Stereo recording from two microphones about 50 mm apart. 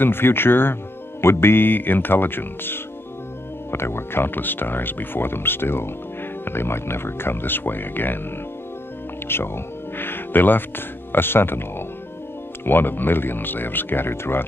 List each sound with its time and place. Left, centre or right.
0.0 s speech: left
9.3 s speech: left
12.6 s speech: left